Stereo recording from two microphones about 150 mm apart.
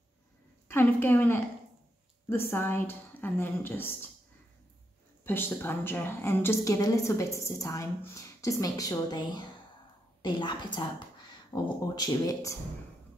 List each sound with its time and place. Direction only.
0.7 s a woman's voice: 15° left (ahead or behind)
5.2 s a woman's voice: 15° left (ahead or behind)